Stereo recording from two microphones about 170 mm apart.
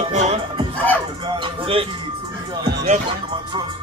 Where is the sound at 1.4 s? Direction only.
35° right (ahead or behind).